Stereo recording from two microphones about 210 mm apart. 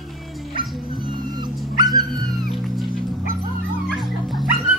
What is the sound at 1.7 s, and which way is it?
Dog, 20° right (ahead or behind).